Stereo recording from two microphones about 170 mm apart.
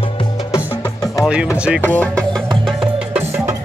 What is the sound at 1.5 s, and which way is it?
Speech, 5° right (ahead or behind).